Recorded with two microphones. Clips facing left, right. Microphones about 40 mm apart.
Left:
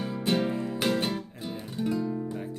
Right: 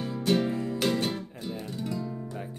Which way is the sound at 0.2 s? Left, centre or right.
Centre.